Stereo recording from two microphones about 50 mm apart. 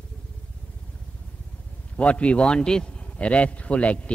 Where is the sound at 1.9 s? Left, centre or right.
Left.